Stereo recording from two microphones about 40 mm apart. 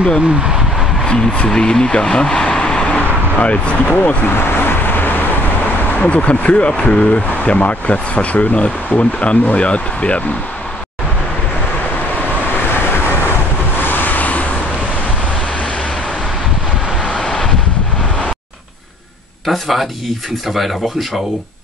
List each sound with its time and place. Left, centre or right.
1.0 s a sound: centre
1.4 s speech: left
4.3 s vehicle: left
5.9 s speech: left
13.7 s vehicle: left
17.0 s vehicle: centre
19.4 s speech: centre